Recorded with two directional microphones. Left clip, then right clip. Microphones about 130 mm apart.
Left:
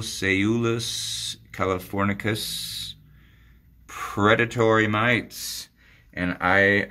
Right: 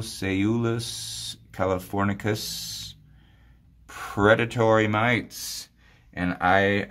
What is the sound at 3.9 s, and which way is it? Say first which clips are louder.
Speech: even; 25° right (ahead or behind).